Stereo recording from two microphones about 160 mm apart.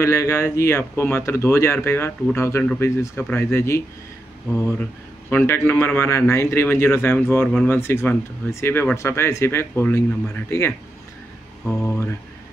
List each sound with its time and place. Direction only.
0.0 s a man's voice: 20° left (ahead or behind)
2.6 s a man's voice: 5° left (ahead or behind)
5.3 s a man's voice: 15° left (ahead or behind)
11.6 s mantra: 5° left (ahead or behind)